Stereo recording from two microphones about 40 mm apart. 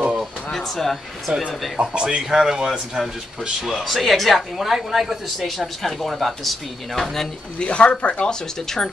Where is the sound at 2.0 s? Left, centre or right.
Centre.